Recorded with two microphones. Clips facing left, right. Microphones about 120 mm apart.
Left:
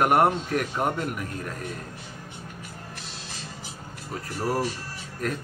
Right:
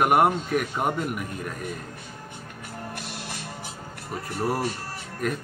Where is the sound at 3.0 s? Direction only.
65° right (ahead or behind).